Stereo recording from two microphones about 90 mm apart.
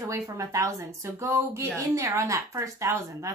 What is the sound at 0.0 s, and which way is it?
Speech, 35° right (ahead or behind).